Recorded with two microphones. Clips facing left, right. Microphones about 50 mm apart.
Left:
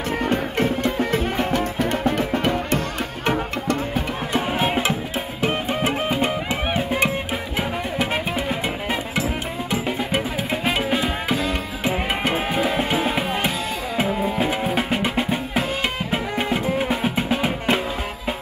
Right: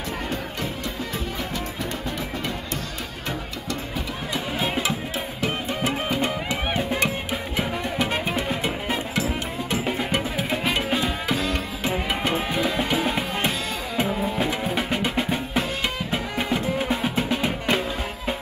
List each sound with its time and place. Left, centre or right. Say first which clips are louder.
0.3 s music: left 8 dB; left
4.6 s music: left 4 dB; left; by 8.7 s centre
9.8 s music: left 2 dB; centre
11.8 s music: left 3 dB; left
16.1 s music: left 3 dB; left